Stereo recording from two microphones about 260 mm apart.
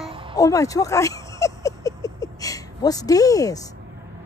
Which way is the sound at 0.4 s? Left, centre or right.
Centre.